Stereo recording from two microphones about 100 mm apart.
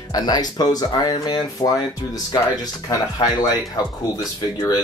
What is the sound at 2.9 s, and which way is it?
Speech, 40° left (ahead or behind).